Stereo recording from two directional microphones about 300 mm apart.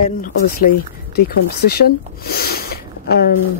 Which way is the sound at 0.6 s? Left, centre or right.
Left.